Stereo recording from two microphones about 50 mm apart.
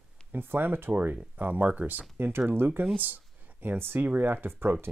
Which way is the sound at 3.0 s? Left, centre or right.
Right.